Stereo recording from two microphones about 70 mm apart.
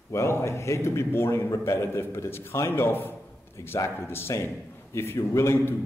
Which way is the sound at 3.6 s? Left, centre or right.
Left.